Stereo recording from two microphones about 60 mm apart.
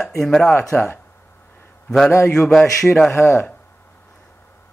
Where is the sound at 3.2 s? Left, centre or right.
Left.